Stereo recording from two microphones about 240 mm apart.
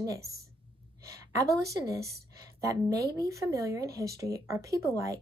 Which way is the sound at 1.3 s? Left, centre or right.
Centre.